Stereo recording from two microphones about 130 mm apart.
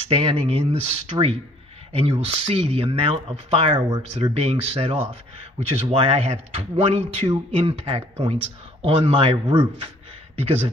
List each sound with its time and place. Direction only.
0.1 s speech: 55° right (ahead or behind); by 9.7 s 35° right (ahead or behind)